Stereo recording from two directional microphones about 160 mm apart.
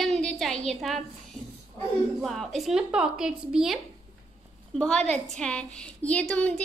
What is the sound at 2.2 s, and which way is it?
A woman's voice, centre (ahead or behind).